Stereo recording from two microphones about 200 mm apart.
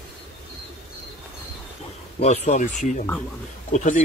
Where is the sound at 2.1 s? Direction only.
35° left (ahead or behind).